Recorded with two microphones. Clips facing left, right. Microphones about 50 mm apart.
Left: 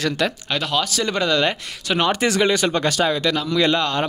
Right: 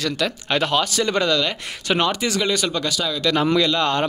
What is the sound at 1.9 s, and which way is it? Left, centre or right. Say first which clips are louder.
Speech: right 1 dB; centre.